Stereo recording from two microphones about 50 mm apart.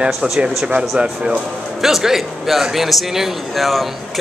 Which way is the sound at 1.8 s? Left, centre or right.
Centre.